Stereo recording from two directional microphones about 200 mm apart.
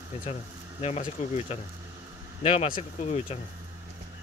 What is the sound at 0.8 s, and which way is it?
Speech, 35° left (ahead or behind).